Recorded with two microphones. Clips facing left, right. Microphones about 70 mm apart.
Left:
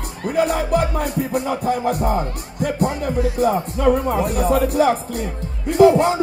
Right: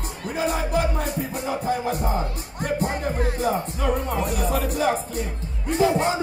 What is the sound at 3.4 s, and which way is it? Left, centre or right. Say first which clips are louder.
Speech: left 9 dB; left.